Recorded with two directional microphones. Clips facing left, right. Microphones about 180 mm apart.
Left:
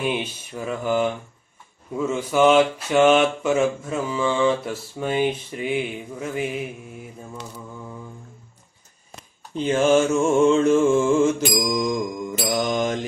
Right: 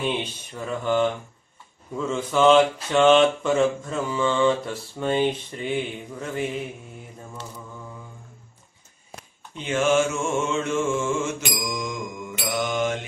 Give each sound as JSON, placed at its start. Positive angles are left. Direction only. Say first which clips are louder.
{"t": 0.0, "sound": "speech", "louder": "left 2 dB", "side_deg": 10}
{"t": 9.6, "sound": "mantra", "louder": "left 3 dB", "side_deg": 35}